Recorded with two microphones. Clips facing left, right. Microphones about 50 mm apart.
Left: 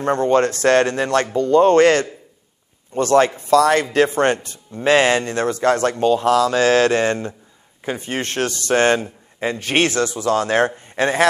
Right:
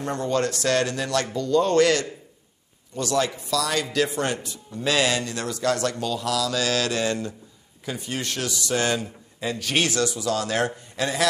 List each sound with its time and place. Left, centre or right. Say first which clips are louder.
0.0 s speech: left 8 dB; left